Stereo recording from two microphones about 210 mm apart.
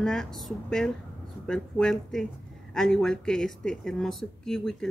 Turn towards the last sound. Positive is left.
turn(degrees=5)  # may be behind; listen again after turning